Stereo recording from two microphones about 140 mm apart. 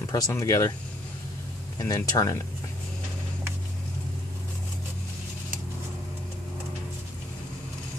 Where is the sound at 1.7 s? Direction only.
25° left (ahead or behind).